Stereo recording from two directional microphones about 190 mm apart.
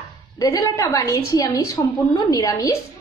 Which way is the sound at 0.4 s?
15° left (ahead or behind).